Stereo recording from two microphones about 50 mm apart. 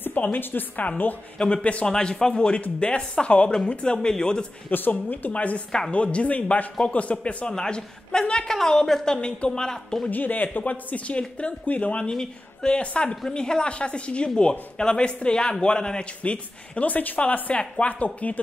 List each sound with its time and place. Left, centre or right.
0.0 s a woman's voice: left
1.4 s speech: left
1.9 s a woman's voice: centre
4.6 s speech: left
7.4 s a woman's voice: centre
10.0 s speech: left; by 16.1 s centre
16.2 s speech: left